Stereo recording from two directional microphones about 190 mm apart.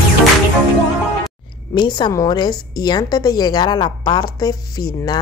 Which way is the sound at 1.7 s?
25° left (ahead or behind).